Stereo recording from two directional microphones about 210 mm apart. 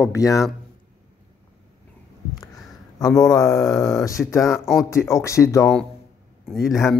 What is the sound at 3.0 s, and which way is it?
Speech, 15° left (ahead or behind).